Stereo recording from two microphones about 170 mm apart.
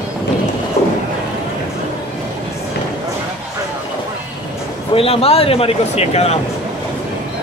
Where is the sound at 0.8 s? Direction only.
40° left (ahead or behind).